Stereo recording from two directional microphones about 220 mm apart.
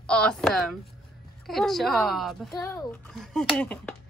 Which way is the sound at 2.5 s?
15° left (ahead or behind).